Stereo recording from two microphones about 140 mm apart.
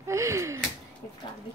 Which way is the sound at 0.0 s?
20° right (ahead or behind).